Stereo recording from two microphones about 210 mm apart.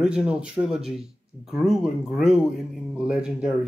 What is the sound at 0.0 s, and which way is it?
Speech, 5° right (ahead or behind).